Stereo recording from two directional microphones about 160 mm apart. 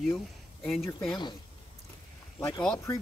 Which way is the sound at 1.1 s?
30° left (ahead or behind).